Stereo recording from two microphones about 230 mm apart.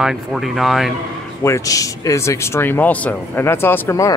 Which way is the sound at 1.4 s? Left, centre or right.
Centre.